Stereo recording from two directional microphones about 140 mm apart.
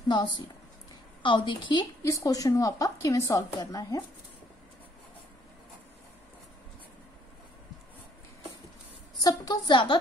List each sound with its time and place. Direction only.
1.2 s a woman's voice: 35° left (ahead or behind)
9.2 s a woman's voice: 25° left (ahead or behind)